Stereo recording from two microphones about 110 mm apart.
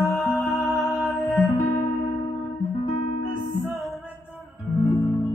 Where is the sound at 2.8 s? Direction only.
70° left (ahead or behind).